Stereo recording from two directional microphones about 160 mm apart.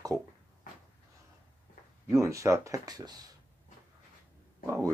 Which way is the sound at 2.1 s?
20° right (ahead or behind).